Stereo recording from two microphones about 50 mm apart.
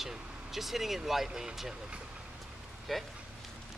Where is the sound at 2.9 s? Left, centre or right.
Centre.